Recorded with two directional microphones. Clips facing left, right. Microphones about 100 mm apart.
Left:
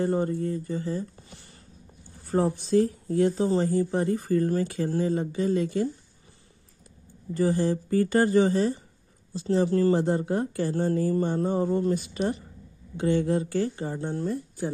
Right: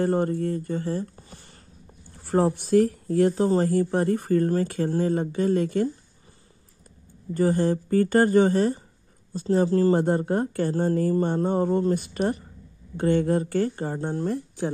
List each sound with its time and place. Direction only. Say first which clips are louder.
0.0 s speech: right 2 dB; 60° right (ahead or behind)
1.1 s a sound: right 2 dB; 40° right (ahead or behind)
2.2 s speech: right 3 dB; 70° right (ahead or behind); by 5.9 s 50° right (ahead or behind)
7.3 s speech: right 2 dB; 50° right (ahead or behind)
9.7 s speech: right 1 dB; 35° right (ahead or behind)
9.9 s speech: right 2 dB; 50° right (ahead or behind)
10.7 s speech: right 1 dB; 35° right (ahead or behind)
11.5 s speech: right 2 dB; 50° right (ahead or behind)
14.2 s speech: right 2 dB; 65° right (ahead or behind)